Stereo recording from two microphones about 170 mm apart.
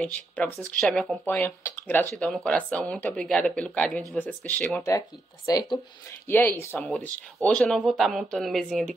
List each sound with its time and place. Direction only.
0.0 s speech: 10° left (ahead or behind)
5.5 s speech: 25° left (ahead or behind)
6.2 s speech: 15° left (ahead or behind)